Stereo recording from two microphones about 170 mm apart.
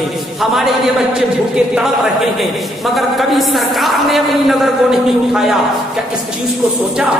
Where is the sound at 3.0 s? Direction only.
Centre (ahead or behind).